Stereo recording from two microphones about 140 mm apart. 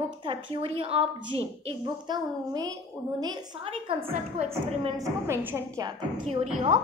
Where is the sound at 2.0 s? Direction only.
30° right (ahead or behind).